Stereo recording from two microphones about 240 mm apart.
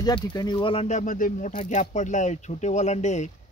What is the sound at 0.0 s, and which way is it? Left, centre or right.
Speech, centre.